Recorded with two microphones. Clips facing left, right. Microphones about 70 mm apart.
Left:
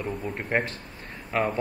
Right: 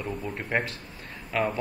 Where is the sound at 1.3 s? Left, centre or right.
Centre.